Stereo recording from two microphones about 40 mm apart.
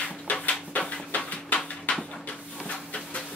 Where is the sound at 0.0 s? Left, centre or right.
Left.